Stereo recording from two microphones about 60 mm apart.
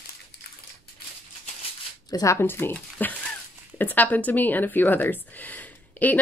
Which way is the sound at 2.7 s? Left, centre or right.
Left.